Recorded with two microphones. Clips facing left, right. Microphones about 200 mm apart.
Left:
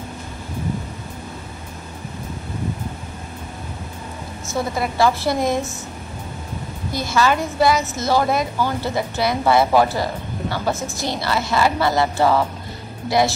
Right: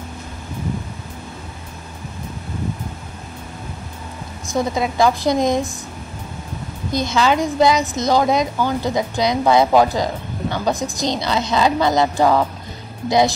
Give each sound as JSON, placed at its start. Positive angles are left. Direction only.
{"t": 4.5, "sound": "a woman's voice", "side_deg": -15}
{"t": 6.9, "sound": "a woman's voice", "side_deg": -20}